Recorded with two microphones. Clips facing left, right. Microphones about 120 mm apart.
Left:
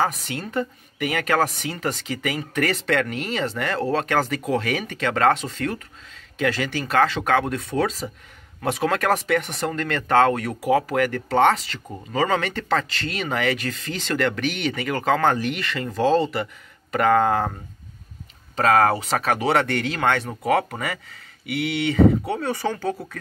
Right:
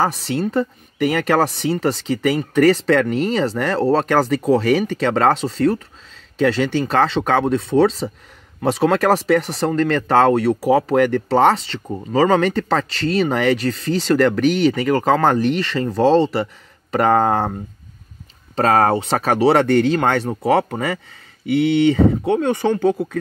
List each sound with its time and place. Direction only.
0.0 s speech: 30° right (ahead or behind)
18.6 s speech: 30° right (ahead or behind)